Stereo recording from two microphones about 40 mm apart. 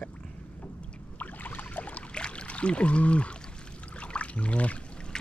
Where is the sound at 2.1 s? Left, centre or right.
Left.